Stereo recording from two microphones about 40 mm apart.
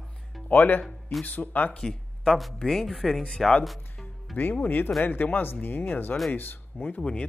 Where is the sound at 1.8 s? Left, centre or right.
Centre.